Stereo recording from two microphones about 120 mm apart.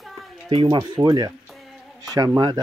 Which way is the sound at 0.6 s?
40° right (ahead or behind).